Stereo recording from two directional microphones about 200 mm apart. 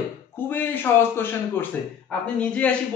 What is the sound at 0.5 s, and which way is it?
A man's voice, 10° left (ahead or behind).